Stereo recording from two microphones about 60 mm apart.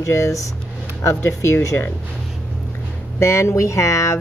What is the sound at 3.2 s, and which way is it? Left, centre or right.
Speech, left.